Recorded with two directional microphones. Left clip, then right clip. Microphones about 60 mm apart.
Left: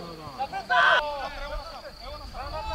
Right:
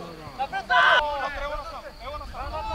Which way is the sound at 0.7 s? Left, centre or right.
Centre.